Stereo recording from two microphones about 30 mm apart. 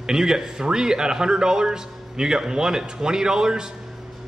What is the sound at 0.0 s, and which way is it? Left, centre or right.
A man's voice, centre.